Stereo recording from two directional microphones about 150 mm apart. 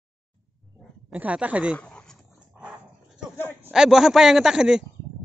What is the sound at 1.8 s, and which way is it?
Dog, 5° left (ahead or behind).